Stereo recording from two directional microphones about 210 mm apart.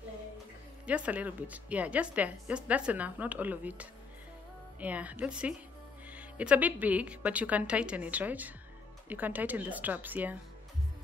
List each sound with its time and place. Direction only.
0.8 s a woman's voice: 5° right (ahead or behind)